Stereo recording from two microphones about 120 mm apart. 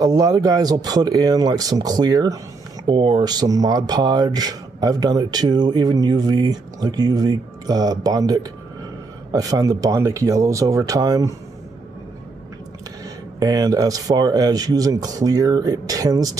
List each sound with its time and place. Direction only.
0.0 s speech: 30° right (ahead or behind)
13.4 s speech: 30° right (ahead or behind)